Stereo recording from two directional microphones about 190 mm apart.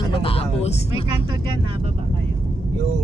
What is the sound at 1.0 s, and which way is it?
Speech, 25° right (ahead or behind).